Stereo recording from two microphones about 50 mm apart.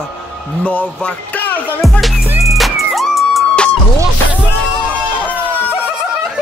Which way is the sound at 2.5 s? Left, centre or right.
Centre.